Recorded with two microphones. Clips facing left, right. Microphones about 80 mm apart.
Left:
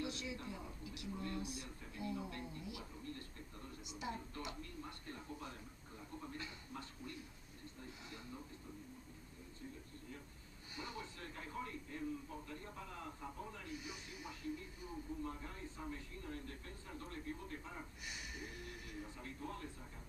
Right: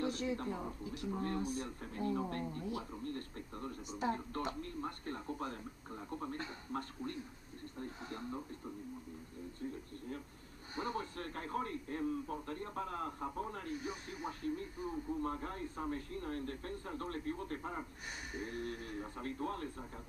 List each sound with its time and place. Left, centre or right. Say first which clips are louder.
0.0 s a man's voice: right 8 dB; right
10.8 s a man's voice: right 9 dB; right